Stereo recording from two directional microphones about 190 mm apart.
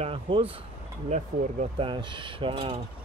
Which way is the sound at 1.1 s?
40° right (ahead or behind).